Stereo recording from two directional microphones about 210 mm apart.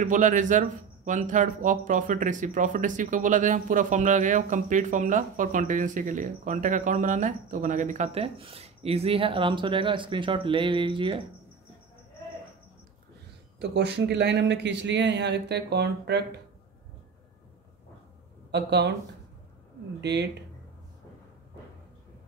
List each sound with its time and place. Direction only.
0.0 s speech: 35° right (ahead or behind)
13.6 s a man's voice: 50° right (ahead or behind)
18.5 s a man's voice: 55° right (ahead or behind)
20.0 s a man's voice: 55° right (ahead or behind)